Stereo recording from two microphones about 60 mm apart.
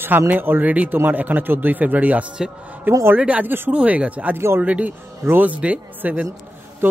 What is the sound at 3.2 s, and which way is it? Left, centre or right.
A man's voice, right.